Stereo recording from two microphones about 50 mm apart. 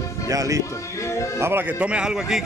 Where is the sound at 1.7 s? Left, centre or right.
Right.